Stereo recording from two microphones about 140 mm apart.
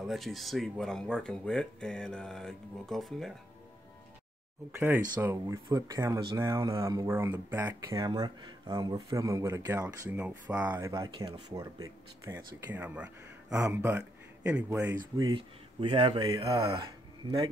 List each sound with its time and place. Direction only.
0.0 s speech: centre (ahead or behind)
4.7 s speech: 15° right (ahead or behind)
8.0 s speech: 30° right (ahead or behind); by 10.9 s 15° right (ahead or behind)
10.9 s speech: 30° right (ahead or behind)
12.7 s speech: 10° right (ahead or behind)
15.0 s speech: 30° right (ahead or behind)